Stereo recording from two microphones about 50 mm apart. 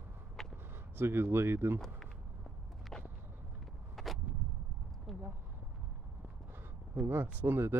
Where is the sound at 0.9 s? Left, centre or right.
Right.